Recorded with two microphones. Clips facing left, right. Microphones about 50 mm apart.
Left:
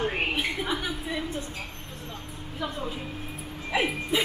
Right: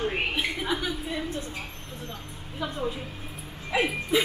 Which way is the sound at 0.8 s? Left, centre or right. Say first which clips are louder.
Even; centre.